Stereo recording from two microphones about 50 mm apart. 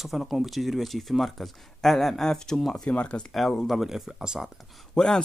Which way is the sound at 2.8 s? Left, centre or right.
Left.